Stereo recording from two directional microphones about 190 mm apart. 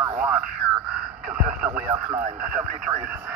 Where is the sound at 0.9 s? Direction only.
5° right (ahead or behind).